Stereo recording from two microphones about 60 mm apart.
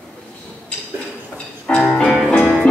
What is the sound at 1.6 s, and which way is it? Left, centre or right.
Music, centre.